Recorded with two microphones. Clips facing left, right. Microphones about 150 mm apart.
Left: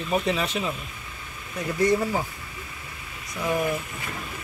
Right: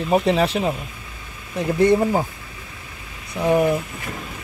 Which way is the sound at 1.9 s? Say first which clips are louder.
Right 6 dB; 45° right (ahead or behind).